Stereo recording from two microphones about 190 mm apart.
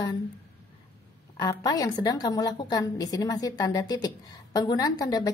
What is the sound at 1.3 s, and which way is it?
A woman's voice, 20° left (ahead or behind).